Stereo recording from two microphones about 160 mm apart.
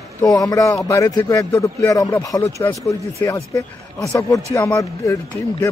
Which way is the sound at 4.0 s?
5° left (ahead or behind).